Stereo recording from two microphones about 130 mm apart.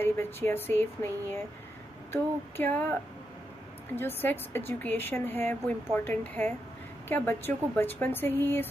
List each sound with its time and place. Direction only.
0.0 s a woman's voice: 15° left (ahead or behind)
2.5 s a woman's voice: 15° left (ahead or behind)